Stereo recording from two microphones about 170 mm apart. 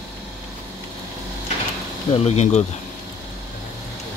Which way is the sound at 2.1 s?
40° left (ahead or behind).